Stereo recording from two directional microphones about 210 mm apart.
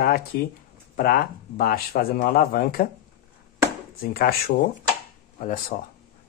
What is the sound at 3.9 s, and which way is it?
Speech, 45° left (ahead or behind).